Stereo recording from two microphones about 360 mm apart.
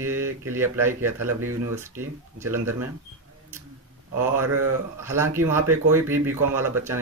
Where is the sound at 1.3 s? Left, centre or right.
Right.